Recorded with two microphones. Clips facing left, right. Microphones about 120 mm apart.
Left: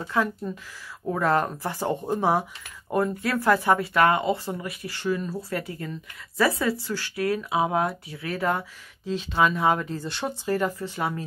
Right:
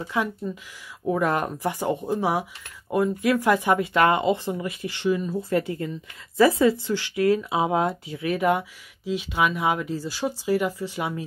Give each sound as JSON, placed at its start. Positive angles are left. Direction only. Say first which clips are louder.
{"t": 0.0, "sound": "speech", "louder": "left 1 dB", "side_deg": -15}